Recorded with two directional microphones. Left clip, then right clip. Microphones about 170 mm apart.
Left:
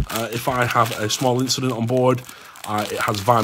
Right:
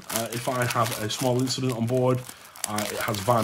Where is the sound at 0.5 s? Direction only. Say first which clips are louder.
Left 7 dB; 50° left (ahead or behind).